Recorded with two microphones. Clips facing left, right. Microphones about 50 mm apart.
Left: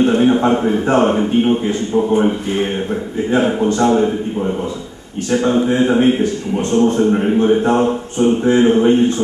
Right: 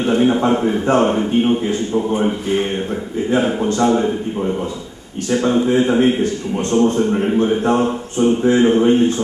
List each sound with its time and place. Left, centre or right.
0.0 s a man's voice: centre